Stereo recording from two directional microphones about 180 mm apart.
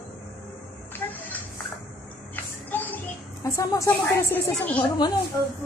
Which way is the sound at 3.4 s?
15° left (ahead or behind).